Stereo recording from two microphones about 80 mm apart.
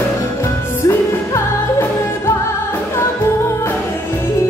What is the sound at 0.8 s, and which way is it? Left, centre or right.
Music, left.